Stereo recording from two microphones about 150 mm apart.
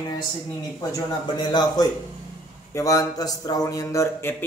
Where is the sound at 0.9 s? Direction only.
30° left (ahead or behind).